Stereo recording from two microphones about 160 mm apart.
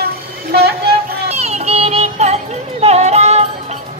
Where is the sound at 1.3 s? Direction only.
40° right (ahead or behind).